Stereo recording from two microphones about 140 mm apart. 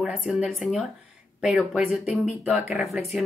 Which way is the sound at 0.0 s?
5° right (ahead or behind).